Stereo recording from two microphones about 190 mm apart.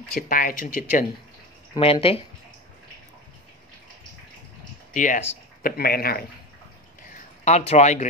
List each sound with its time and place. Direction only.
0.3 s speech: 45° left (ahead or behind)
1.8 s speech: 30° left (ahead or behind)
4.9 s speech: 40° left (ahead or behind)
7.1 s a sound: 40° left (ahead or behind)